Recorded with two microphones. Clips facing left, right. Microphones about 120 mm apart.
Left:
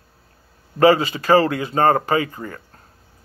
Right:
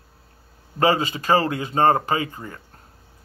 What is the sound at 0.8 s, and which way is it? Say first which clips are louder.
A man's voice: left 5 dB; 25° right (ahead or behind).